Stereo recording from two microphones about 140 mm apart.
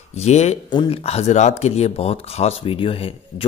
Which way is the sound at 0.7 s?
40° left (ahead or behind).